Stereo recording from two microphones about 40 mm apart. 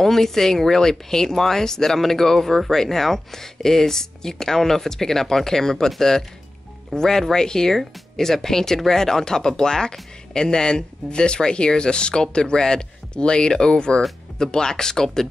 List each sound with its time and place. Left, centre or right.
0.0 s speech: centre